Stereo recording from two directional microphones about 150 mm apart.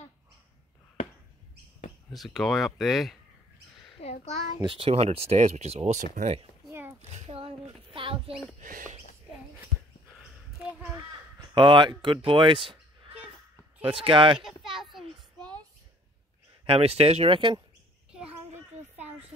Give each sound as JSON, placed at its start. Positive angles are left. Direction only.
{"t": 2.1, "sound": "speech", "side_deg": 0}
{"t": 4.0, "sound": "a child's voice", "side_deg": 45}
{"t": 4.6, "sound": "speech", "side_deg": -35}
{"t": 6.7, "sound": "a sound", "side_deg": -15}
{"t": 7.0, "sound": "a sound", "side_deg": -50}
{"t": 8.5, "sound": "speech", "side_deg": -60}
{"t": 10.6, "sound": "a sound", "side_deg": -10}
{"t": 11.5, "sound": "speech", "side_deg": -35}
{"t": 13.8, "sound": "speech", "side_deg": -35}
{"t": 14.4, "sound": "children playing", "side_deg": 0}
{"t": 16.6, "sound": "speech", "side_deg": -40}
{"t": 18.1, "sound": "a sound", "side_deg": -10}